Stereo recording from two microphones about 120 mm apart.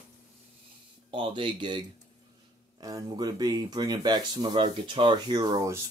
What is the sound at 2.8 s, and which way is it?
Speech, 35° right (ahead or behind).